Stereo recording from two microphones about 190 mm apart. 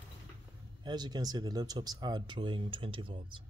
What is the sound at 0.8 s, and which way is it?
Speech, 20° right (ahead or behind).